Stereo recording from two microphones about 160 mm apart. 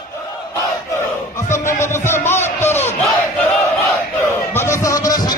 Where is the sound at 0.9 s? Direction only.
15° left (ahead or behind).